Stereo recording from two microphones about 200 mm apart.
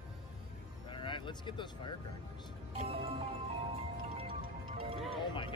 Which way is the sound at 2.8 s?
30° right (ahead or behind).